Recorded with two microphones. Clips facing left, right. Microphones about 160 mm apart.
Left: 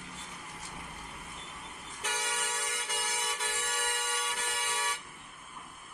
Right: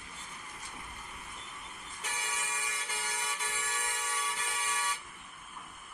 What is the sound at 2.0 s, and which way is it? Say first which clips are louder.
Vehicle horn: left 4 dB; 80° left.